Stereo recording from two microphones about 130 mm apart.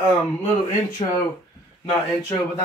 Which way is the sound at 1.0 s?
45° left (ahead or behind).